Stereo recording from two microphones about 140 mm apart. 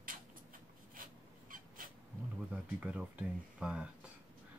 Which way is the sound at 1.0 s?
80° right.